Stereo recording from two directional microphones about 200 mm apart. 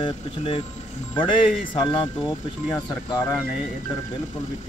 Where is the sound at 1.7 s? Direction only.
25° left (ahead or behind).